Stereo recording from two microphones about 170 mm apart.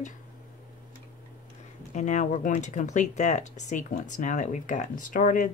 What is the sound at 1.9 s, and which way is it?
Speech, 45° left (ahead or behind).